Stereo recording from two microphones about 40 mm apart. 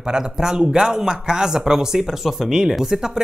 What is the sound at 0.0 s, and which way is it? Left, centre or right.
Speech, centre.